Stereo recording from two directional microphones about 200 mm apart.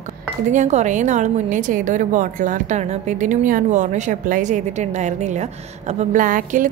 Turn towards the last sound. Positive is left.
turn(degrees=-40)  # may be behind; listen again after turning